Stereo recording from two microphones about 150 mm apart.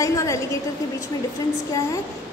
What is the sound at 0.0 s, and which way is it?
Speech, 20° left (ahead or behind).